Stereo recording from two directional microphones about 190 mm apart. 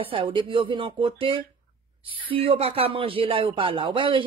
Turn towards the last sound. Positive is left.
turn(degrees=-25)  # may be behind; listen again after turning